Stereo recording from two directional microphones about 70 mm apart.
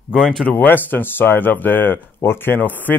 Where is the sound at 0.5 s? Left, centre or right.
Left.